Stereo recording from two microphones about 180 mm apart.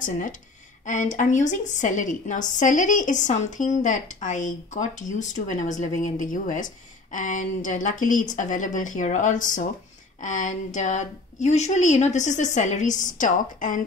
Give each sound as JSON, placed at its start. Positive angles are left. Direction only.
{"t": 0.0, "sound": "a woman's voice", "side_deg": 45}